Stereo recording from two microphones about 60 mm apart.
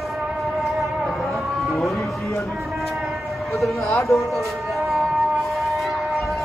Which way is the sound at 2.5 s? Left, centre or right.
Centre.